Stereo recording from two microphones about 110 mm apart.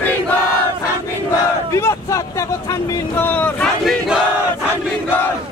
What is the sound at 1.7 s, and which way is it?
Speech, 30° left (ahead or behind).